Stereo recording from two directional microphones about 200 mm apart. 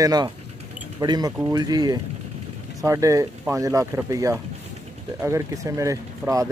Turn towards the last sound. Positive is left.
turn(degrees=-15)  # may be behind; listen again after turning